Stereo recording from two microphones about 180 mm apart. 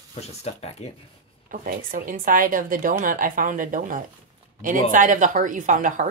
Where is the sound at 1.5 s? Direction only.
50° right (ahead or behind).